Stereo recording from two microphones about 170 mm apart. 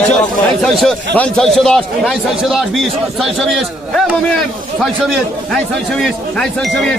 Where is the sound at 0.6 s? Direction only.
Centre (ahead or behind).